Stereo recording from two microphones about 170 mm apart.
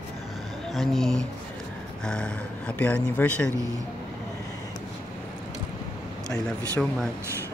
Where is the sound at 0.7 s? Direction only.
Centre (ahead or behind).